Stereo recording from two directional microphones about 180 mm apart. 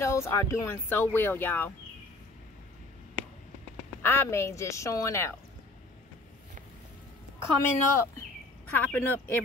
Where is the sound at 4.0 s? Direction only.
15° left (ahead or behind).